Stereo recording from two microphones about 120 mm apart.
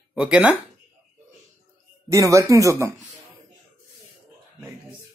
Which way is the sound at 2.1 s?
25° right (ahead or behind).